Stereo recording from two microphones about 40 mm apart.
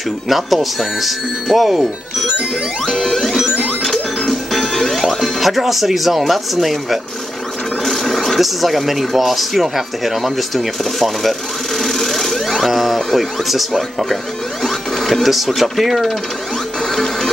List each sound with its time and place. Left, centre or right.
0.3 s speech: centre
2.9 s music: centre
5.4 s speech: centre
7.8 s sewing machine: centre
8.4 s speech: centre
12.6 s speech: centre
14.6 s printer: centre
15.2 s speech: centre
16.9 s printer: centre